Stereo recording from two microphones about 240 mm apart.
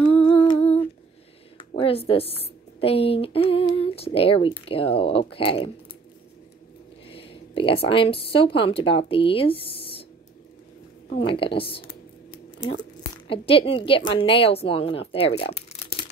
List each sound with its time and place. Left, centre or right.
0.1 s humming: left
1.7 s speech: left
7.1 s speech: left
11.1 s speech: left
13.3 s speech: left